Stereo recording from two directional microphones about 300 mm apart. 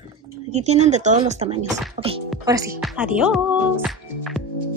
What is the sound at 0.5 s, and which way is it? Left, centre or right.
Speech, right.